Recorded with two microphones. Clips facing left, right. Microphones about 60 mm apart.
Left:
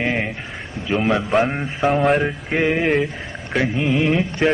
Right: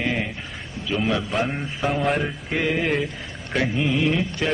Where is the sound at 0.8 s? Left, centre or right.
Left.